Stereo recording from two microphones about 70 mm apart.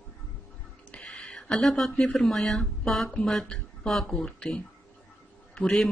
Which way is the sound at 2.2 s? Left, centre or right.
Centre.